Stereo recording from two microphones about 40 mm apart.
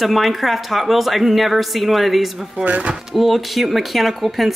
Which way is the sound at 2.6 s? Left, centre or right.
Right.